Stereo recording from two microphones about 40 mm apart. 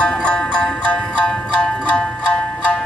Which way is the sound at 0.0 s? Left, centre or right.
Left.